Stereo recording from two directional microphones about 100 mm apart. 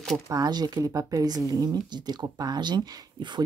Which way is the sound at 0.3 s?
40° right (ahead or behind).